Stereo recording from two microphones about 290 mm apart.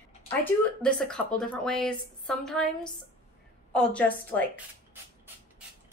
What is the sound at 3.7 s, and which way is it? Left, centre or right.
Speech, centre.